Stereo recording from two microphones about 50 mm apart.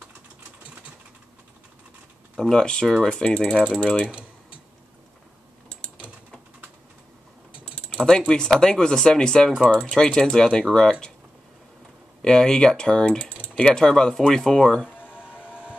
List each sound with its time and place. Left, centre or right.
2.5 s speech: centre
3.3 s speech: left
7.6 s typing: left
8.5 s speech: centre
12.2 s speech: centre
13.7 s speech: centre
15.0 s music: right